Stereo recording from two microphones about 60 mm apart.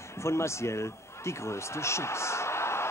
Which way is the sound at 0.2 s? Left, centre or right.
Left.